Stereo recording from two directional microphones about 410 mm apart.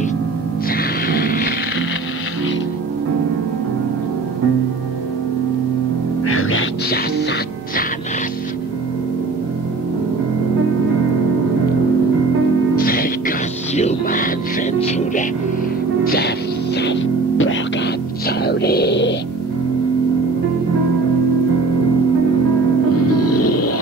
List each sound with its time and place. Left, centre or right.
0.7 s a sound: left
6.2 s music: left
12.7 s music: left
23.3 s music: left